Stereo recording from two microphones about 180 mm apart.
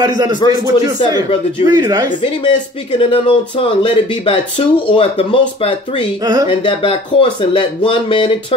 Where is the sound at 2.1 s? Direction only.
30° left (ahead or behind).